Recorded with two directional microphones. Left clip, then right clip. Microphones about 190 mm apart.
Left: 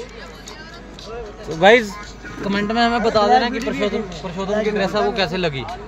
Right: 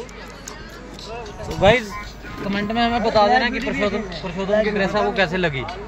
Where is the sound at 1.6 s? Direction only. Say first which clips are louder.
Left 4 dB; 60° left (ahead or behind).